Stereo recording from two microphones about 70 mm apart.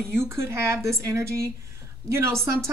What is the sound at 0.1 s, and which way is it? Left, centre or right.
A woman's voice, right.